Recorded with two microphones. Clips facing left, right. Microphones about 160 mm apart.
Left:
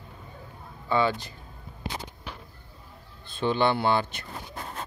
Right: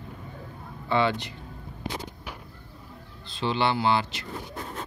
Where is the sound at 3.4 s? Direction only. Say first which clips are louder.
Left 1 dB; 50° left (ahead or behind).